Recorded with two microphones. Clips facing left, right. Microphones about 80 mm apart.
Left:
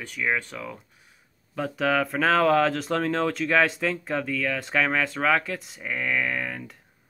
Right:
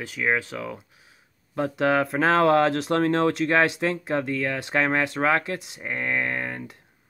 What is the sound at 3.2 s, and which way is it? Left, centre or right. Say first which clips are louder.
Speech: right 2 dB; centre.